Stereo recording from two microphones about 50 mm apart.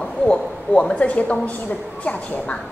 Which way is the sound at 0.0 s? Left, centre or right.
Centre.